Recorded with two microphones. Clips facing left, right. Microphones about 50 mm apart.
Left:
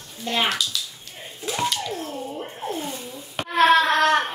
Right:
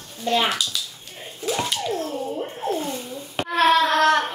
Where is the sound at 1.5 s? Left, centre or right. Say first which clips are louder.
Right 1 dB; centre.